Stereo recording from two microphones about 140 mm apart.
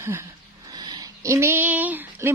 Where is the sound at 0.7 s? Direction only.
30° right (ahead or behind); by 2.3 s 15° right (ahead or behind).